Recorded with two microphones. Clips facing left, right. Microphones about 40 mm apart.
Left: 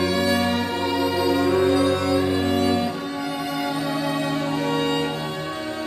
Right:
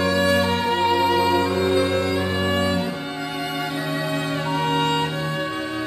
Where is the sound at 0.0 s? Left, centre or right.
Right.